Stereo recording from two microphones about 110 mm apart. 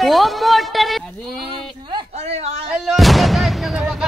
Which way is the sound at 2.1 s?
70° right (ahead or behind).